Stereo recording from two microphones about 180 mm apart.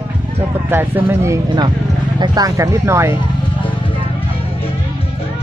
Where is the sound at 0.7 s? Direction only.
10° right (ahead or behind).